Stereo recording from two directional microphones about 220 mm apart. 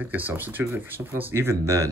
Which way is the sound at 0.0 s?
10° right (ahead or behind).